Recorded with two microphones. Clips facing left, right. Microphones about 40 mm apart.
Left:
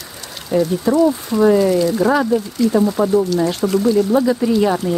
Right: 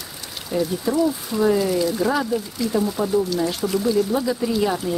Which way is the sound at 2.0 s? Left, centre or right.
Centre.